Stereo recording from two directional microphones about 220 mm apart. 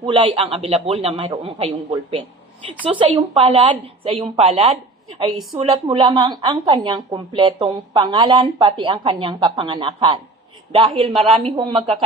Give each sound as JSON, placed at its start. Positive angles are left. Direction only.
{"t": 0.0, "sound": "a woman's voice", "side_deg": -25}